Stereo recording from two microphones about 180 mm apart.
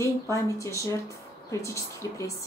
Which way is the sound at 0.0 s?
15° left (ahead or behind).